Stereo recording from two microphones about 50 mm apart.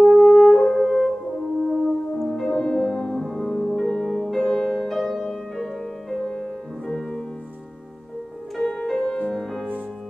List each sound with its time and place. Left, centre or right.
0.0 s french horn: centre
1.7 s music: centre
4.3 s music: centre
8.6 s music: centre